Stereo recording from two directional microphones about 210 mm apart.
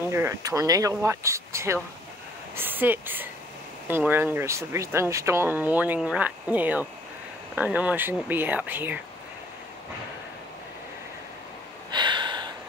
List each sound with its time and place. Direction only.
0.1 s speech: 15° right (ahead or behind)
11.9 s gasp: 20° right (ahead or behind)